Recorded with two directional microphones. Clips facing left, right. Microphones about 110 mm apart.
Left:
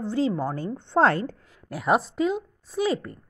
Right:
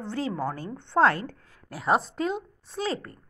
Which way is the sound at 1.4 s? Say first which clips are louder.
Left 2 dB; 20° left (ahead or behind).